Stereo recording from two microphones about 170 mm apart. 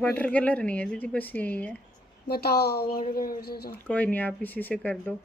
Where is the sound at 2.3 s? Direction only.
70° left (ahead or behind).